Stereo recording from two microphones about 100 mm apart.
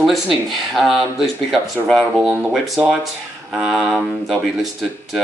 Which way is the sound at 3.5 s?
5° right (ahead or behind).